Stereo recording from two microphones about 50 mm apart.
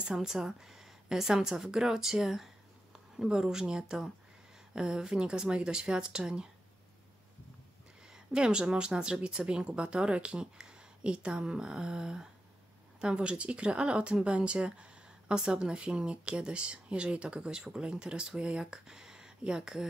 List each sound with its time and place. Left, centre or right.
0.0 s a woman's voice: centre
8.1 s a woman's voice: centre